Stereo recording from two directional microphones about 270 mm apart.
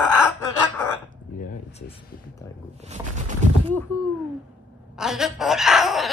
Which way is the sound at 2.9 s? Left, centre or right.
Right.